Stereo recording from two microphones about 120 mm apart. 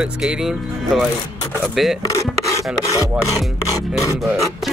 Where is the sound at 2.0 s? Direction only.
30° left (ahead or behind).